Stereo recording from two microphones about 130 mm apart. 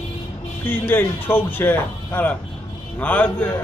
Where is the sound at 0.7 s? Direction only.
15° left (ahead or behind).